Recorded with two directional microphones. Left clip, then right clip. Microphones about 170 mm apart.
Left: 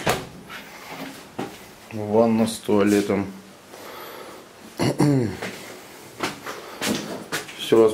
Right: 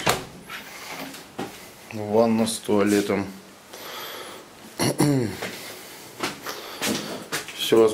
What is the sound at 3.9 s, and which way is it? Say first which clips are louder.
Gasp: right 3 dB; 10° left (ahead or behind).